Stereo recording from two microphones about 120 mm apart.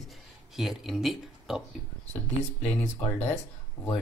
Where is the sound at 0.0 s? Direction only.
Centre (ahead or behind).